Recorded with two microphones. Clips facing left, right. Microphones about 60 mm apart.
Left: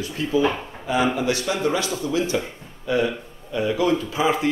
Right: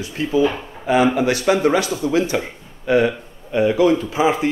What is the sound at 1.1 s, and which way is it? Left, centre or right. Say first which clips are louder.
Speech: right 6 dB; right.